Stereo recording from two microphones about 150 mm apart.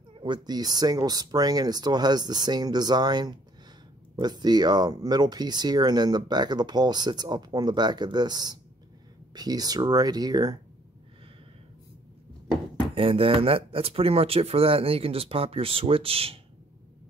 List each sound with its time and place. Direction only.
0.1 s speech: 30° right (ahead or behind)
12.9 s speech: 40° right (ahead or behind)